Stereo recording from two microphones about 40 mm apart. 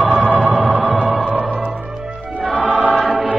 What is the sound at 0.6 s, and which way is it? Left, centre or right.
Music, right.